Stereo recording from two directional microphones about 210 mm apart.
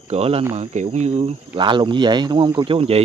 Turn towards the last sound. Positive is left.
turn(degrees=-30)  # may be behind; listen again after turning